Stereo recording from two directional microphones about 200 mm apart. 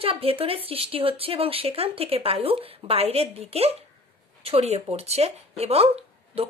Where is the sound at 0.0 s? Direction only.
30° right (ahead or behind).